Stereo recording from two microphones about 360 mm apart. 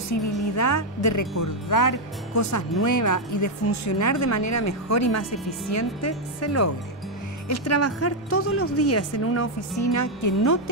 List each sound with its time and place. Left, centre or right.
0.1 s a woman's voice: left